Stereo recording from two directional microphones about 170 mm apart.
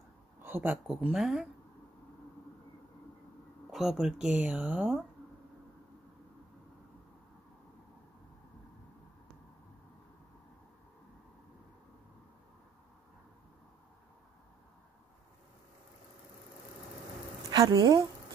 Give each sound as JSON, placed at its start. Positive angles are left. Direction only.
{"t": 0.4, "sound": "speech", "side_deg": -10}
{"t": 3.7, "sound": "speech", "side_deg": 0}
{"t": 17.5, "sound": "a woman's voice", "side_deg": -20}